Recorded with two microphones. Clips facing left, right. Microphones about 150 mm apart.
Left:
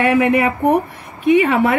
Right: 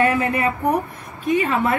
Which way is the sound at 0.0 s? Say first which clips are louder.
Left 5 dB; 80° left.